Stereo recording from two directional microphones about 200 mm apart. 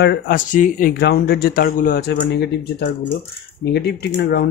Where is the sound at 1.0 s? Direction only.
55° left (ahead or behind).